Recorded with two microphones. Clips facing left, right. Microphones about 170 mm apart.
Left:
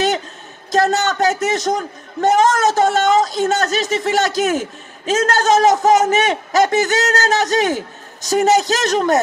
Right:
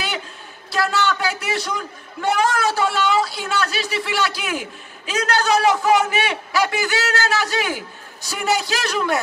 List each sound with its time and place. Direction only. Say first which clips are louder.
0.7 s a man's voice: left 5 dB; 45° left (ahead or behind)